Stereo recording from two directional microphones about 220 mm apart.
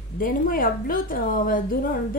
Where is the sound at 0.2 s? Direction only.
40° left (ahead or behind).